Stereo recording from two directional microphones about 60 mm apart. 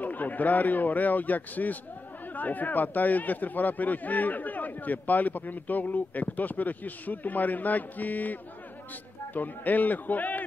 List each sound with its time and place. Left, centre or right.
0.0 s speech: left